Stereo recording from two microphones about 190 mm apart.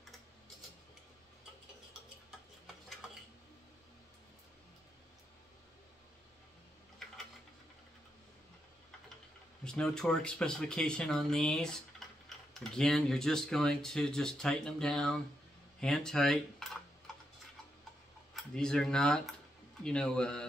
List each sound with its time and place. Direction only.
3.0 s dishes: 5° right (ahead or behind)
9.7 s speech: 5° left (ahead or behind)
18.3 s speech: 5° left (ahead or behind)